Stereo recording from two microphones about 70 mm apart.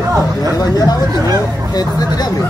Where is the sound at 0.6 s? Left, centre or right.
Left.